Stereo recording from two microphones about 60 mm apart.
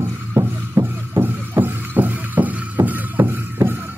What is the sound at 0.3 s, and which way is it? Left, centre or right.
Music, right.